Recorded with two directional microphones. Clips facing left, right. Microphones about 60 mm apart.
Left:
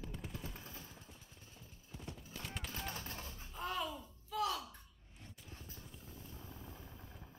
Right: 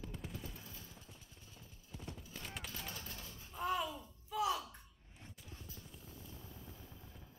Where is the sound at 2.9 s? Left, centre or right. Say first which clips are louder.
Left 3 dB; left.